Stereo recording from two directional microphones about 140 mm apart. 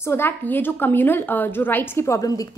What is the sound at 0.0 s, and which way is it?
A woman's voice, 15° left (ahead or behind).